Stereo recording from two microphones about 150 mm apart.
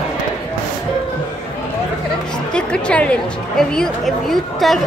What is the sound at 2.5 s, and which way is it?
A woman's voice, 5° left (ahead or behind).